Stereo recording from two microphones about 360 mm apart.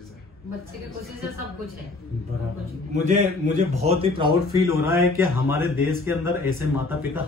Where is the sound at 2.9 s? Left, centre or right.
Right.